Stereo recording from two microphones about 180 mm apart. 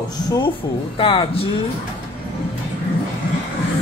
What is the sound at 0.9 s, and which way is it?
Speech, 30° left (ahead or behind).